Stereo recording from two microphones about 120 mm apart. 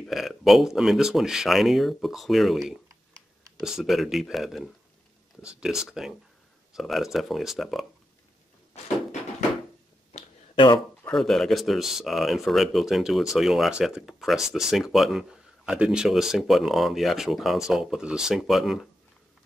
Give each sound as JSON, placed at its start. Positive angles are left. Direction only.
{"t": 0.0, "sound": "speech", "side_deg": 0}
{"t": 10.1, "sound": "a sound", "side_deg": 45}
{"t": 11.1, "sound": "speech", "side_deg": 5}